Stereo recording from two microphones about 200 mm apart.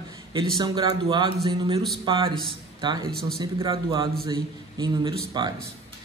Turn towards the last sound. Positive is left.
turn(degrees=-20)  # may be behind; listen again after turning